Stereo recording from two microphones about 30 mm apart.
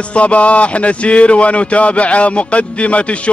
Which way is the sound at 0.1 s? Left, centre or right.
Left.